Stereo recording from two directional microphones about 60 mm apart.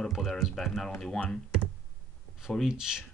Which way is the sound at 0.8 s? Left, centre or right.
Centre.